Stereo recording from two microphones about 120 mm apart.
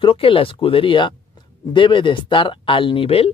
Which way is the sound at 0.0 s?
50° left (ahead or behind).